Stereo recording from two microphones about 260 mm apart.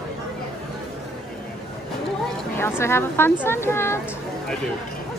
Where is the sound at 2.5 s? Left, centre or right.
Centre.